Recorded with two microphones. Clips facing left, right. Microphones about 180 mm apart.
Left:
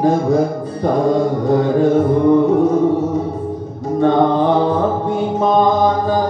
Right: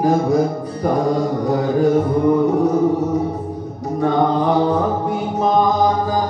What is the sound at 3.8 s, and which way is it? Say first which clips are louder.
Mantra: left 4 dB; 25° left (ahead or behind).